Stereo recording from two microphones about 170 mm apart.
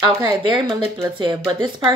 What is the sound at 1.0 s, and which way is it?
Speech, 25° right (ahead or behind).